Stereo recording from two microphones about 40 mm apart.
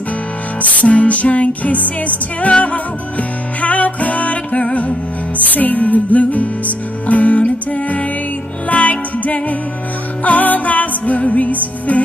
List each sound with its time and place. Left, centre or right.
0.6 s music: left